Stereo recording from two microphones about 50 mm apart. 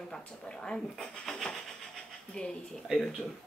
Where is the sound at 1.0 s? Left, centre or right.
Centre.